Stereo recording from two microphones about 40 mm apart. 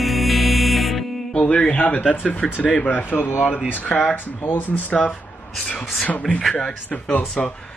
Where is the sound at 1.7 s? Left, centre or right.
Left.